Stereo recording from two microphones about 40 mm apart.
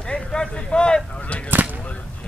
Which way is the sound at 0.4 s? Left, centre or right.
Left.